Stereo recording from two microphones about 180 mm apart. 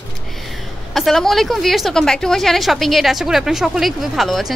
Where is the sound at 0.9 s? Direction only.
Centre (ahead or behind).